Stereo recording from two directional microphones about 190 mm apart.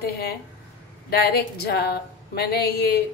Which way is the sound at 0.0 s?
55° left (ahead or behind).